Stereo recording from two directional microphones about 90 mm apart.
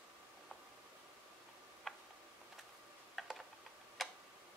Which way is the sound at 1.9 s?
Centre (ahead or behind).